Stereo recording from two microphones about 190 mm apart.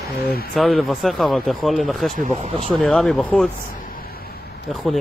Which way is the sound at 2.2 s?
35° right (ahead or behind).